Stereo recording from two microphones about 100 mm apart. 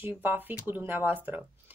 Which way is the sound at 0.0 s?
20° right (ahead or behind).